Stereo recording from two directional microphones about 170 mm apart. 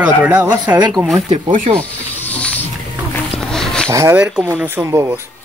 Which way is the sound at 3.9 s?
15° right (ahead or behind).